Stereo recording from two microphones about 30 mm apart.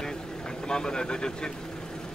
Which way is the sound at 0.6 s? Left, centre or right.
Left.